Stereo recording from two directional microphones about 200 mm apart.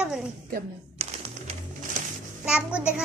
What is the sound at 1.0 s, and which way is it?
Music, 30° right (ahead or behind).